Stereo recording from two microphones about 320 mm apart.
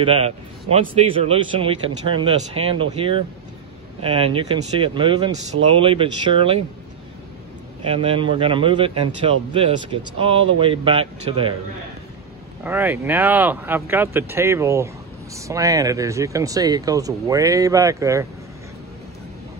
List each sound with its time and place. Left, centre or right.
0.0 s a man's voice: centre
7.8 s a man's voice: centre
12.6 s a man's voice: centre